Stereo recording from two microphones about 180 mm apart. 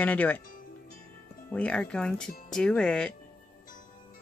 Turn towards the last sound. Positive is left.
turn(degrees=5)  # may be behind; listen again after turning